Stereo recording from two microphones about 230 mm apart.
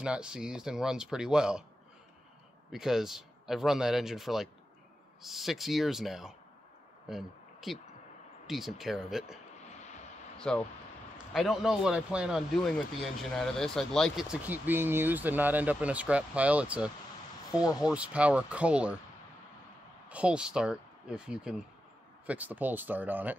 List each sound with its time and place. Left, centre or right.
0.0 s a man's voice: centre
2.7 s a man's voice: centre
9.7 s vehicle: left
10.4 s a man's voice: centre
20.1 s speech: centre